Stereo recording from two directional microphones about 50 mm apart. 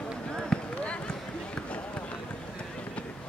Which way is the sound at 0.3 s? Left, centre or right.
Centre.